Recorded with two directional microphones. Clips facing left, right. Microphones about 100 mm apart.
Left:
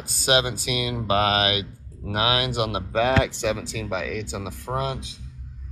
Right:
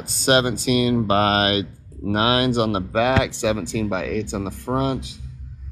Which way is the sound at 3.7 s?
65° right (ahead or behind).